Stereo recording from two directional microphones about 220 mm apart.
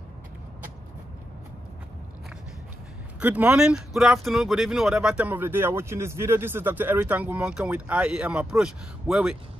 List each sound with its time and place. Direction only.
3.2 s speech: 5° right (ahead or behind)